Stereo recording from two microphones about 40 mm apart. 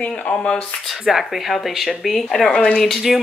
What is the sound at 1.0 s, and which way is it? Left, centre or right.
Speech, centre.